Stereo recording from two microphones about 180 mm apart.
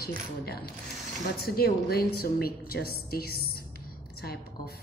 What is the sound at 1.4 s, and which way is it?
A woman's voice, 60° left (ahead or behind).